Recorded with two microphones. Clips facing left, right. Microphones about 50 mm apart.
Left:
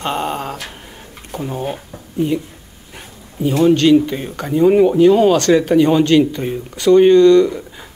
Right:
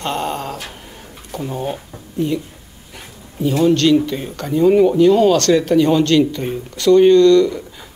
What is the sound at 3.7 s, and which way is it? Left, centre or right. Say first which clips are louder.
Speech: left 4 dB; centre.